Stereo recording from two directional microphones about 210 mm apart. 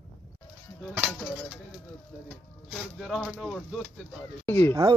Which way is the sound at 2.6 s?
Centre (ahead or behind).